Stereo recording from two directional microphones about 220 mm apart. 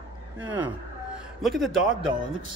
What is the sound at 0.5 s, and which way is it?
Speech, 10° right (ahead or behind).